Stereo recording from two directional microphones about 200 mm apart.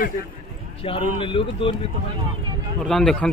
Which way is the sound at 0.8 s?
25° left (ahead or behind).